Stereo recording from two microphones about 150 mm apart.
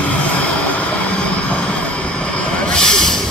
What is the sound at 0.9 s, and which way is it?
Vehicle, 10° left (ahead or behind).